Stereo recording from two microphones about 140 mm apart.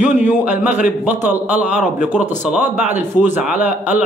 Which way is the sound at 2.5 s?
10° right (ahead or behind).